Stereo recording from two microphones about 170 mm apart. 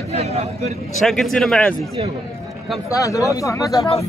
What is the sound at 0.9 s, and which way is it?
Speech, centre (ahead or behind).